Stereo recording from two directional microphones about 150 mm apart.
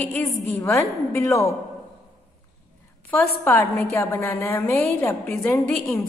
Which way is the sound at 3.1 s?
15° left (ahead or behind).